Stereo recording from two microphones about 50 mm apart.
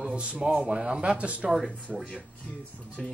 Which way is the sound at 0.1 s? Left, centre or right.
Right.